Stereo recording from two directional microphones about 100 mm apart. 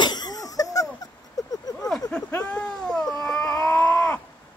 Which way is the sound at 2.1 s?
10° left (ahead or behind).